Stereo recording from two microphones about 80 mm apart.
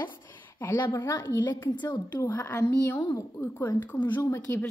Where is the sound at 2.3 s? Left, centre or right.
Left.